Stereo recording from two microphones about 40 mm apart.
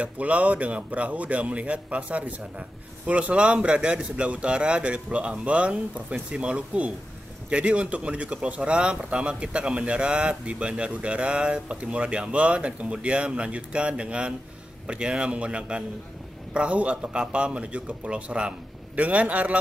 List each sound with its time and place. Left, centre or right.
0.0 s a man's voice: right
18.9 s a man's voice: right